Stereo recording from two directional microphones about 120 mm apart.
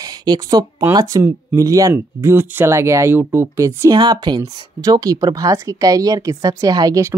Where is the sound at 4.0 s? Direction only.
35° right (ahead or behind).